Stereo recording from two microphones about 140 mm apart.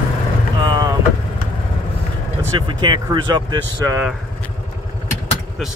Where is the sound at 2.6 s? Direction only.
30° right (ahead or behind).